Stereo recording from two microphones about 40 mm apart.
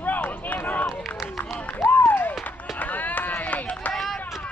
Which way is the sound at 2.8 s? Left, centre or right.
Left.